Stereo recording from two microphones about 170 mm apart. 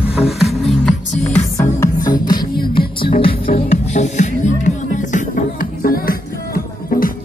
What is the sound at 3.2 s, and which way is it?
Music, 60° left (ahead or behind).